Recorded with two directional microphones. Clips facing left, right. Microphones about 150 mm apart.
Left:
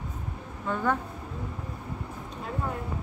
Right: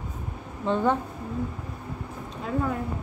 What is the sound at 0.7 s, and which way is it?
Speech, 25° right (ahead or behind).